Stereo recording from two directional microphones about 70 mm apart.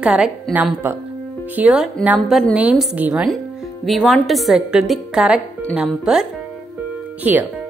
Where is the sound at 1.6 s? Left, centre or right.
Centre.